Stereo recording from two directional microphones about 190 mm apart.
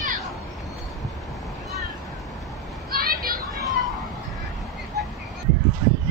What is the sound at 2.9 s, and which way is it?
Children playing, 50° right (ahead or behind).